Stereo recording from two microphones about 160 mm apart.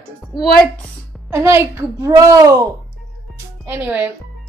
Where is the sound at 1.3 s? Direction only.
15° right (ahead or behind).